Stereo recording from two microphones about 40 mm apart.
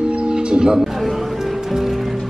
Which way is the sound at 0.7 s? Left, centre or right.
Centre.